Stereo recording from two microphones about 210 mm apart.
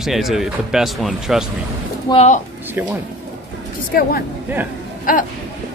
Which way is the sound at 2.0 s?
30° left (ahead or behind).